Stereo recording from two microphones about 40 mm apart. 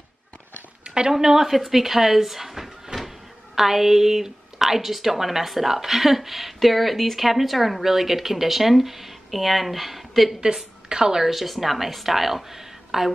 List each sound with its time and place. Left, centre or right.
0.8 s a sound: right
1.1 s a woman's voice: centre
10.4 s a woman's voice: centre